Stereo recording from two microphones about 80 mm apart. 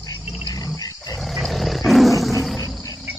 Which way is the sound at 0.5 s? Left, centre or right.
Left.